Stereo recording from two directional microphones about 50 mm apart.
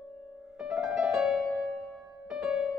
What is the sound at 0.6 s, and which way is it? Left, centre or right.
Music, centre.